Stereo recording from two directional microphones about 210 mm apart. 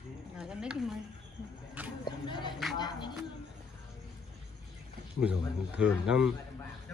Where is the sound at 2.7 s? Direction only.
20° left (ahead or behind).